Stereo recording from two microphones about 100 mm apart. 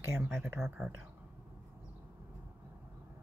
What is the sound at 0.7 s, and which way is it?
Speech, 10° right (ahead or behind).